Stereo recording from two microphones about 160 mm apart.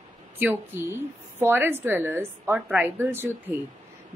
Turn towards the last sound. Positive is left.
turn(degrees=-15)  # may be behind; listen again after turning